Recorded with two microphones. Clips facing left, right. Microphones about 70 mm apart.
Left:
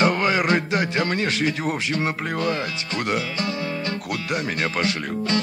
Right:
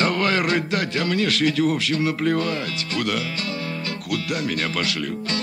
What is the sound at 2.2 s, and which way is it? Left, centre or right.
Speech, centre.